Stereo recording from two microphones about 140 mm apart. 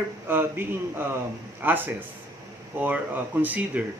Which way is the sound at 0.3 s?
15° right (ahead or behind).